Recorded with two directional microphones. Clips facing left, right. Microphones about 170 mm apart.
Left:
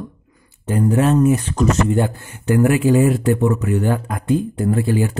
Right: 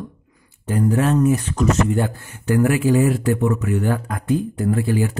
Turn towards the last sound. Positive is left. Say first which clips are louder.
# left 2 dB
turn(degrees=25)  # may be behind; listen again after turning